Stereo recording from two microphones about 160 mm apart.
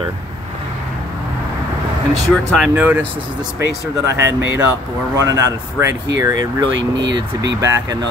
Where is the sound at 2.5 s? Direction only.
5° right (ahead or behind); by 6.9 s 25° right (ahead or behind).